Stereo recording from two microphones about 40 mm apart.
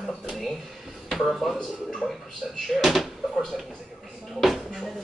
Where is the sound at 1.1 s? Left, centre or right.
Centre.